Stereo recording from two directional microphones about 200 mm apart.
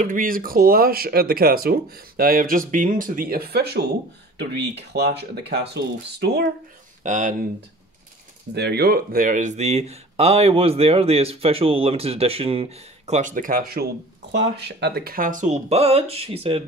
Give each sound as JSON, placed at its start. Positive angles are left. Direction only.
{"t": 0.0, "sound": "speech", "side_deg": -45}
{"t": 7.0, "sound": "speech", "side_deg": -40}
{"t": 8.5, "sound": "speech", "side_deg": -55}
{"t": 14.3, "sound": "speech", "side_deg": -60}